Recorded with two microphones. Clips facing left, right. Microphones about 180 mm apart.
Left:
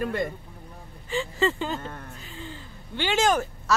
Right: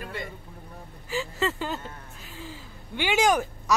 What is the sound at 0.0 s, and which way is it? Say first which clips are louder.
Speech: left 9 dB; 50° left (ahead or behind).